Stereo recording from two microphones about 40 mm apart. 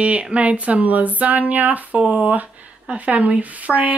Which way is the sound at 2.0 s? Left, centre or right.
Right.